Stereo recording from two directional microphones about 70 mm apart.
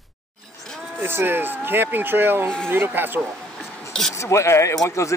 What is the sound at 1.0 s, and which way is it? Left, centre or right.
Speech, right.